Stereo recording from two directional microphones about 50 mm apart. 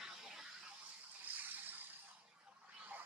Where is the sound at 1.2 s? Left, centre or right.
Right.